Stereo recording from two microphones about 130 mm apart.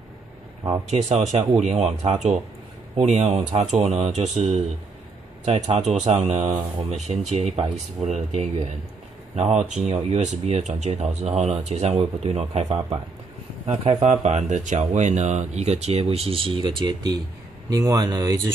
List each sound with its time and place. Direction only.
0.8 s a man's voice: 55° right (ahead or behind)
14.2 s speech: 65° right (ahead or behind); by 18.4 s 30° right (ahead or behind)